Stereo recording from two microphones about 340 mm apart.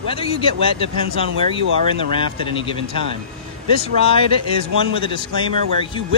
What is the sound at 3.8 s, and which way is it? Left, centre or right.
Speech, centre.